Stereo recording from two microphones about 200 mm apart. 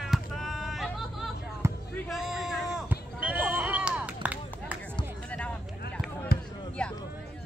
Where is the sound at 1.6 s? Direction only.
15° right (ahead or behind).